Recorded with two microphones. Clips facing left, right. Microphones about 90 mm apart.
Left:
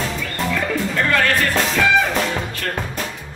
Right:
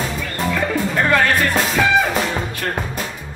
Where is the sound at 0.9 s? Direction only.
20° right (ahead or behind).